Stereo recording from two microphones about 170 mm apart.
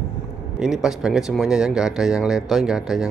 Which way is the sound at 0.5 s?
5° right (ahead or behind).